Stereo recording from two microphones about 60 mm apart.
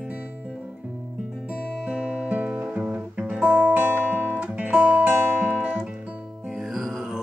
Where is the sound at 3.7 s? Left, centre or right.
Right.